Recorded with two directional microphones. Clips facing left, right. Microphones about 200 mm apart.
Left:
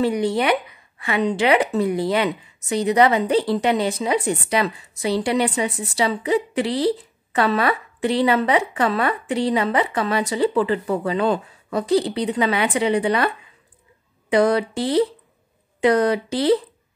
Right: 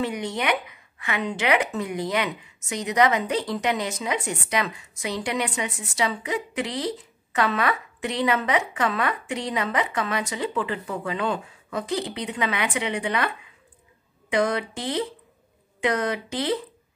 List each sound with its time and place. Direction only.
0.0 s speech: 35° left (ahead or behind)
14.3 s speech: 35° left (ahead or behind)